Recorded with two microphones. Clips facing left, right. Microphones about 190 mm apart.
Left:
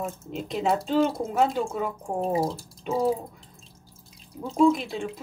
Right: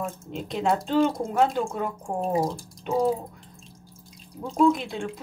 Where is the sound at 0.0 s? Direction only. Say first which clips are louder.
Even; centre (ahead or behind).